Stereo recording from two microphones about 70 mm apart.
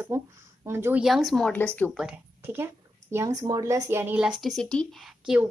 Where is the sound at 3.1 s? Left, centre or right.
Right.